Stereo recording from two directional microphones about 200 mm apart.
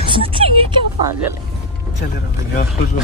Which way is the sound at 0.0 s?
25° right (ahead or behind).